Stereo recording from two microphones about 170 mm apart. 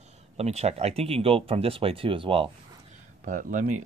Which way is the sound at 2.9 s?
50° right (ahead or behind).